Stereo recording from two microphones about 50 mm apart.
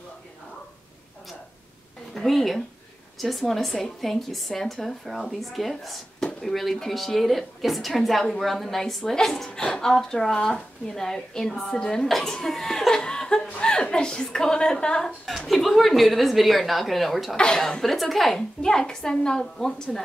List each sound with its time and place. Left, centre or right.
2.1 s a woman's voice: centre
15.2 s speech: centre
18.6 s a woman's voice: centre